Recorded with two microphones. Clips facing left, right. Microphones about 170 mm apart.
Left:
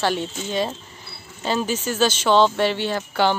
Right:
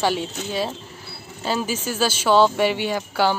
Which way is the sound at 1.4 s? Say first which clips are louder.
Left 1 dB; 5° right (ahead or behind).